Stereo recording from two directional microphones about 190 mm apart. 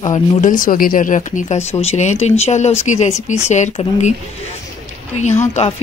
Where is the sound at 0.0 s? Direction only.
35° left (ahead or behind).